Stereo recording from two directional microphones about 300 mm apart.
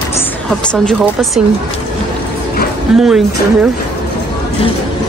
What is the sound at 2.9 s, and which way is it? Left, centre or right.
Speech, centre.